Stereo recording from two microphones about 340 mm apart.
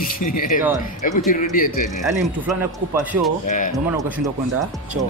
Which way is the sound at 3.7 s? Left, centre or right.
Centre.